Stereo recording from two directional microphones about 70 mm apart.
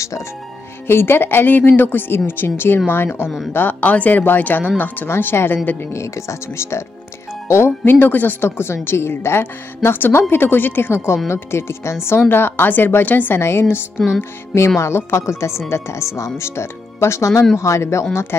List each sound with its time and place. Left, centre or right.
0.8 s a woman's voice: left
5.9 s a woman's voice: left
8.5 s a woman's voice: left